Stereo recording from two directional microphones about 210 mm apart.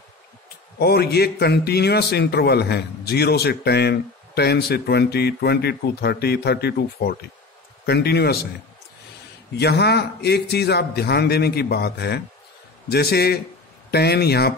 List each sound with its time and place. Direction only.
0.7 s a man's voice: 50° left (ahead or behind)
9.6 s a man's voice: 50° left (ahead or behind)